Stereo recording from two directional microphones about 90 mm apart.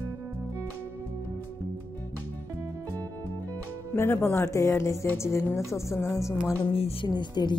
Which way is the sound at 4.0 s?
25° left (ahead or behind).